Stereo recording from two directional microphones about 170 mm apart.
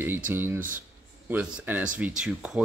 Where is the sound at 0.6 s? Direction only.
50° right (ahead or behind).